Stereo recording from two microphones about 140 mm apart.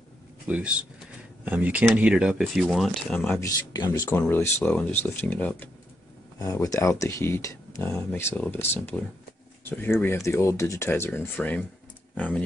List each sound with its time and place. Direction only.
0.5 s speech: 10° right (ahead or behind); by 3.3 s 10° left (ahead or behind)
3.3 s speech: 30° left (ahead or behind)
4.2 s speech: 15° left (ahead or behind)
6.4 s speech: 25° left (ahead or behind)